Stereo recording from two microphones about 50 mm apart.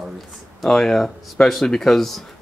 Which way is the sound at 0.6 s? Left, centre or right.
Centre.